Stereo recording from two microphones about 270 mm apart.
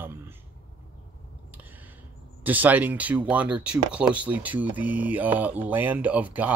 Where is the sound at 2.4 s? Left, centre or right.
Centre.